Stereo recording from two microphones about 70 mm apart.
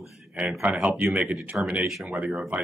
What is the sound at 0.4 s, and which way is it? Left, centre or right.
Speech, centre.